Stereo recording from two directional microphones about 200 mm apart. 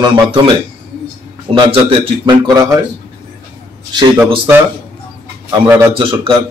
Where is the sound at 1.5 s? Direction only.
30° right (ahead or behind).